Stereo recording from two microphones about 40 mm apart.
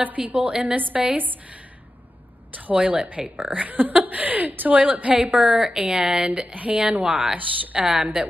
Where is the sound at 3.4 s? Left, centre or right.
Right; by 6.3 s centre.